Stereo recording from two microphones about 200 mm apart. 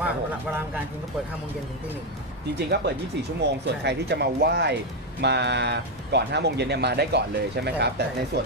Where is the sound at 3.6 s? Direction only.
60° right (ahead or behind).